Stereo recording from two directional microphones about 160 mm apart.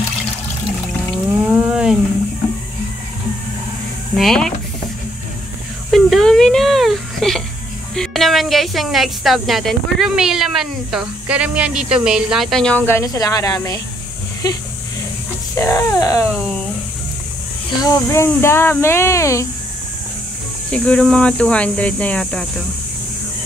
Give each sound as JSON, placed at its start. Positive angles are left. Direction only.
{"t": 1.5, "sound": "a sound", "side_deg": -5}
{"t": 4.2, "sound": "speech", "side_deg": 0}
{"t": 5.9, "sound": "a sound", "side_deg": 0}
{"t": 7.9, "sound": "speech", "side_deg": 0}
{"t": 15.5, "sound": "speech", "side_deg": 20}
{"t": 17.8, "sound": "speech", "side_deg": 20}
{"t": 20.7, "sound": "speech", "side_deg": 5}